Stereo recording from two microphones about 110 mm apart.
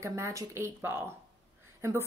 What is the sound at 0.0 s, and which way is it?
Speech, 25° right (ahead or behind).